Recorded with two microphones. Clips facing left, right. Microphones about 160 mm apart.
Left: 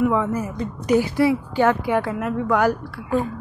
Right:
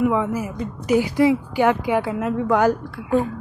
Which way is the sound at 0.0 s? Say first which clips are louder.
Even; 15° right (ahead or behind).